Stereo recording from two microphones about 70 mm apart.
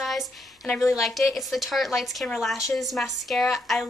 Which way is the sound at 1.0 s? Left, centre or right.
Centre.